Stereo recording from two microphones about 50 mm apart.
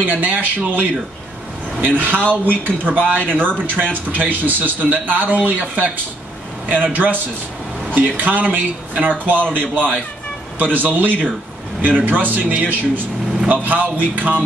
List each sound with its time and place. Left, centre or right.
0.0 s a man's voice: right